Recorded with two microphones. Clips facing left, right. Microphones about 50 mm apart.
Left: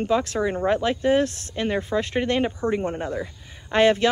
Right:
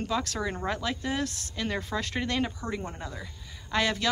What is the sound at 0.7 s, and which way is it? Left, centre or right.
Speech, left.